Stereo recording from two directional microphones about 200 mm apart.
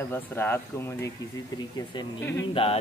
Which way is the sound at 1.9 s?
25° left (ahead or behind).